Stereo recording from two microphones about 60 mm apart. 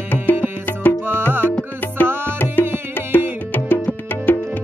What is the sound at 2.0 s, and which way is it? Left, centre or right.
Music, right.